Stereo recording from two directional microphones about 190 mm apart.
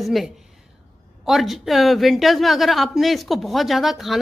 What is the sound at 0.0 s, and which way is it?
A woman's voice, centre (ahead or behind).